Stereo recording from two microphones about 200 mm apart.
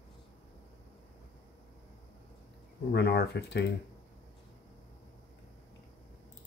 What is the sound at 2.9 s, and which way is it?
Speech, 55° left (ahead or behind).